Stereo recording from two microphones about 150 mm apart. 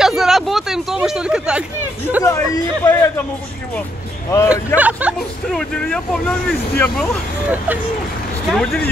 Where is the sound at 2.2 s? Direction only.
20° left (ahead or behind).